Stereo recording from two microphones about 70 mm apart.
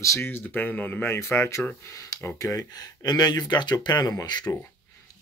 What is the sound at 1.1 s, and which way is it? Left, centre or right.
Speech, left.